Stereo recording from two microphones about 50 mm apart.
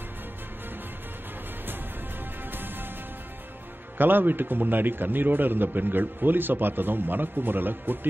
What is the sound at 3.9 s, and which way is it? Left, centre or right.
A man's voice, right.